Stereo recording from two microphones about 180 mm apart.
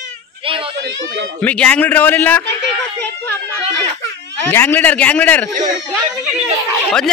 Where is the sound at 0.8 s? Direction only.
90° right.